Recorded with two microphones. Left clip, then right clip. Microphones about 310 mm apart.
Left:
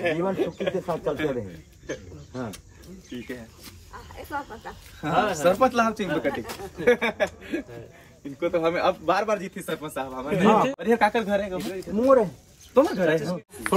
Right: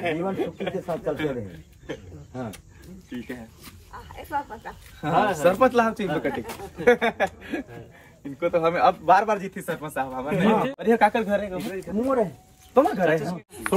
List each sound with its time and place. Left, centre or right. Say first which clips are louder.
0.0 s speech: left 2 dB; centre
10.4 s a man's voice: left 3 dB; left
10.8 s speech: right 2 dB; centre